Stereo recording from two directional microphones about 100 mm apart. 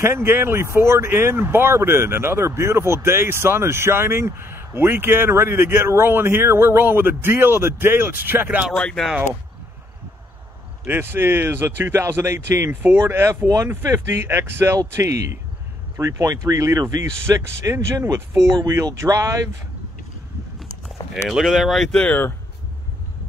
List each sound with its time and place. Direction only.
0.0 s speech: 25° right (ahead or behind)
8.7 s speech: 5° left (ahead or behind)
10.9 s speech: 20° right (ahead or behind)
21.1 s speech: 5° right (ahead or behind); by 22.3 s 15° left (ahead or behind)